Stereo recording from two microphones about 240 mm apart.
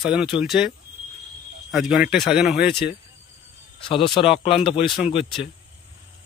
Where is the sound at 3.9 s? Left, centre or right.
Left.